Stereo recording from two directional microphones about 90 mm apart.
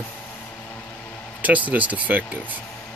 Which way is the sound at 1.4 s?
15° right (ahead or behind).